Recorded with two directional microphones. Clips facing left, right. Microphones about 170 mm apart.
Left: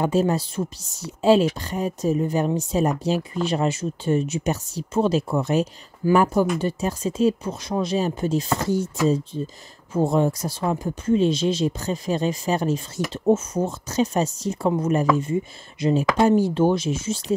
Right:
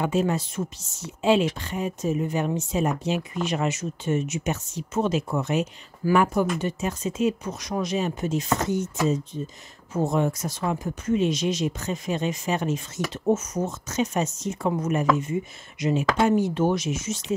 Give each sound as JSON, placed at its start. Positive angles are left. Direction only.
{"t": 0.0, "sound": "speech", "side_deg": 35}